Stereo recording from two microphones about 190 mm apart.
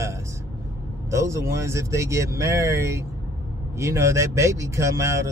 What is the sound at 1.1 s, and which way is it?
Speech, 15° right (ahead or behind).